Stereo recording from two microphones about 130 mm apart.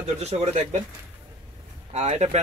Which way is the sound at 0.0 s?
55° right (ahead or behind).